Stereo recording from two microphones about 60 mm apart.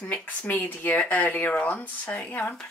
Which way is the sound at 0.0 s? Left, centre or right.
Left.